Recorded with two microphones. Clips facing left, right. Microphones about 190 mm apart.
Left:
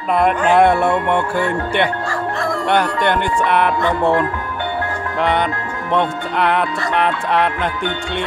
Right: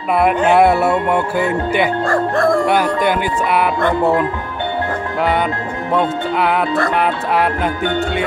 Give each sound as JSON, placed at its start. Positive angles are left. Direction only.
{"t": 0.5, "sound": "music", "side_deg": -5}
{"t": 2.0, "sound": "music", "side_deg": -55}
{"t": 2.6, "sound": "music", "side_deg": -5}
{"t": 5.9, "sound": "music", "side_deg": -5}